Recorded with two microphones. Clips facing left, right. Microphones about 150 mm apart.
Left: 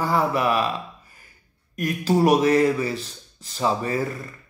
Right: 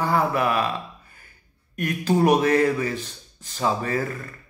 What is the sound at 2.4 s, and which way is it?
A man's voice, 30° left (ahead or behind).